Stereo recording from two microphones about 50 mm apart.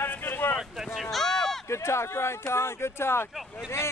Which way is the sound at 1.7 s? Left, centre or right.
Left.